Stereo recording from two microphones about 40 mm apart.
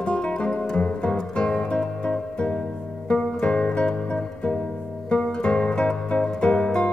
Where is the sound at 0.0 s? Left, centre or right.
Left.